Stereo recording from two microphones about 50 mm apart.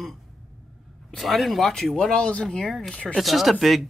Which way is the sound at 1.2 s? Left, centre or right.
Centre.